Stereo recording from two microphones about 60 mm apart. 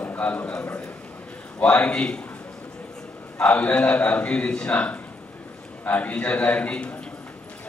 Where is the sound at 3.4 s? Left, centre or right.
Left.